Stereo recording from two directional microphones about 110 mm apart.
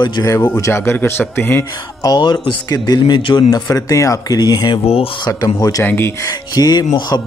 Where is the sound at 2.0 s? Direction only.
40° left (ahead or behind).